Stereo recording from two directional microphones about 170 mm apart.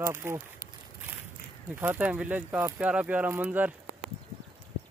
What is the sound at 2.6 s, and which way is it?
Speech, 20° right (ahead or behind).